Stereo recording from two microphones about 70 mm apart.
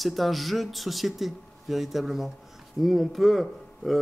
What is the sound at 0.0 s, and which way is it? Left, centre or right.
Speech, centre.